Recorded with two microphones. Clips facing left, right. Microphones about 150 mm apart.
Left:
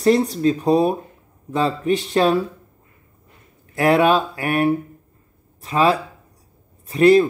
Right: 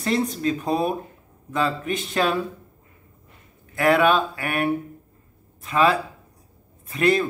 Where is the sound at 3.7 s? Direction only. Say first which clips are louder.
Left 3 dB; 40° left (ahead or behind).